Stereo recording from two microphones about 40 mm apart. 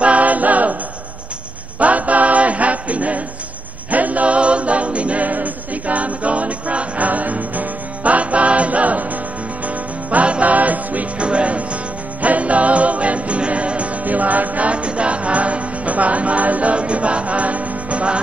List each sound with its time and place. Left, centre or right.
0.0 s a capella: right
1.8 s a sound: right
3.9 s a capella: right
10.1 s music: right
11.2 s music: right